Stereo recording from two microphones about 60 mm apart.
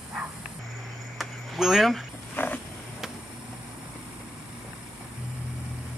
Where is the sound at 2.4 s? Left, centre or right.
Left.